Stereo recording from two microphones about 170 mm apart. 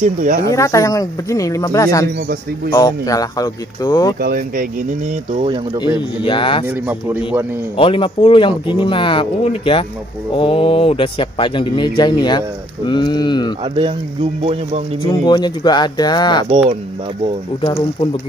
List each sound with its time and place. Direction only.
0.0 s speech: 50° right (ahead or behind)
0.5 s speech: 20° left (ahead or behind)
2.1 s speech: 65° right (ahead or behind)
2.7 s speech: 20° left (ahead or behind)
4.2 s speech: 60° right (ahead or behind)
5.3 s speech: 35° right (ahead or behind)
6.2 s speech: 30° left (ahead or behind)
6.7 s speech: 10° right (ahead or behind)
7.7 s speech: 30° left (ahead or behind)
14.4 s speech: 40° right (ahead or behind)
15.0 s speech: 25° left (ahead or behind)
16.4 s speech: 35° right (ahead or behind)
17.6 s speech: 30° left (ahead or behind)